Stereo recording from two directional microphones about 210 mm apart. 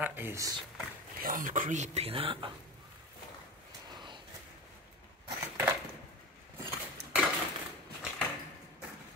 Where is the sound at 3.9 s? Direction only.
20° right (ahead or behind).